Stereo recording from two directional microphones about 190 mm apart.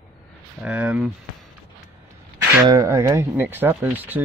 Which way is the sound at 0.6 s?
5° right (ahead or behind).